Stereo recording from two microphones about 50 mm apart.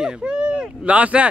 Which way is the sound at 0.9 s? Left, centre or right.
Right.